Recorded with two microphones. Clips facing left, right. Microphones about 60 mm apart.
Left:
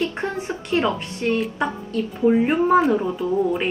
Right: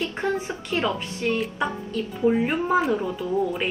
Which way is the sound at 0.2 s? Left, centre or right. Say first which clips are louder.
Even; left.